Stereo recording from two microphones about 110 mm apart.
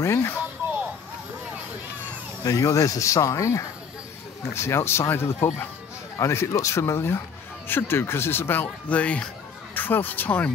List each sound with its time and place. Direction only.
0.0 s speech: 25° left (ahead or behind)
2.4 s speech: 30° left (ahead or behind)